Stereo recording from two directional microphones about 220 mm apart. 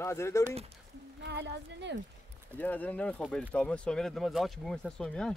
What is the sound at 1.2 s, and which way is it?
Speech, 50° right (ahead or behind).